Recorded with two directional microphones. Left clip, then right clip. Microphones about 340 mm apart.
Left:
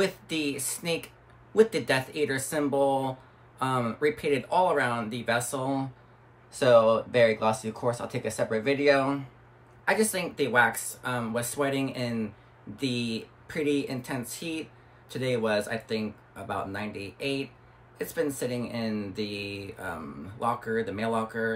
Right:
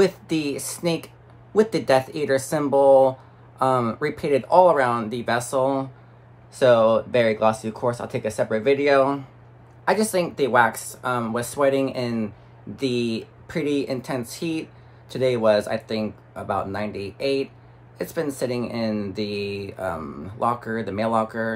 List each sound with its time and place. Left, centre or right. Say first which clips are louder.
0.0 s speech: right 7 dB; centre